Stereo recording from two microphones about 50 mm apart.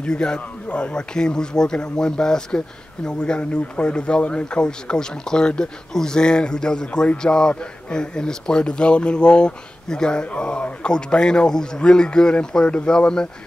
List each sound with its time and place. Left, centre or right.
0.0 s speech: centre